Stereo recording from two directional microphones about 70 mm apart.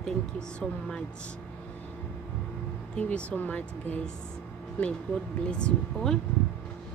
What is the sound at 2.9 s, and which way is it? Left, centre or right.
Speech, centre.